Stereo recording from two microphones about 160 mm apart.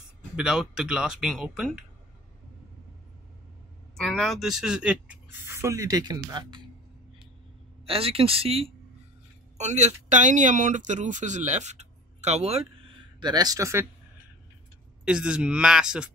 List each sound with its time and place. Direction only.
0.4 s speech: 5° right (ahead or behind)
3.9 s speech: centre (ahead or behind); by 6.6 s 25° right (ahead or behind)
7.8 s speech: 35° right (ahead or behind)
13.2 s speech: 25° right (ahead or behind)
15.0 s speech: 5° right (ahead or behind)